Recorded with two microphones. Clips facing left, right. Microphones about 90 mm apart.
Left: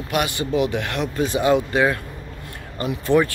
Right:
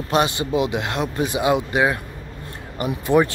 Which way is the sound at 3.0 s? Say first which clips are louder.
Right 1 dB; 20° right (ahead or behind).